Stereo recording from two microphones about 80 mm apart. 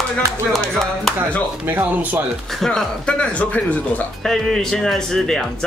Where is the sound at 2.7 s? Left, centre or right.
Centre.